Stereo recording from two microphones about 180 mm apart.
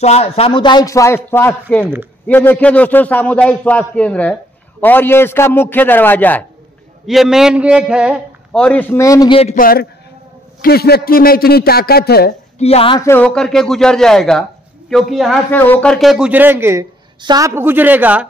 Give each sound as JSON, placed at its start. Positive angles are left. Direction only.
{"t": 0.0, "sound": "a man's voice", "side_deg": 35}
{"t": 7.1, "sound": "a man's voice", "side_deg": 0}
{"t": 8.6, "sound": "a man's voice", "side_deg": 10}
{"t": 9.3, "sound": "speech", "side_deg": 35}
{"t": 9.6, "sound": "a man's voice", "side_deg": 55}
{"t": 12.5, "sound": "speech", "side_deg": 35}
{"t": 13.0, "sound": "a man's voice", "side_deg": 10}
{"t": 15.5, "sound": "a man's voice", "side_deg": 10}
{"t": 17.2, "sound": "a woman's voice", "side_deg": -25}
{"t": 17.6, "sound": "speech", "side_deg": -10}